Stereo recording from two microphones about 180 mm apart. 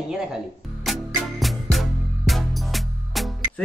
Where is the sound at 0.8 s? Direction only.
Centre (ahead or behind).